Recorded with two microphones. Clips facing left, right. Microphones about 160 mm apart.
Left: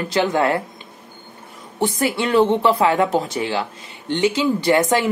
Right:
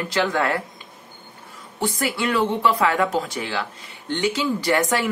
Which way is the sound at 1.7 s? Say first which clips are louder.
Left 4 dB; 20° left (ahead or behind).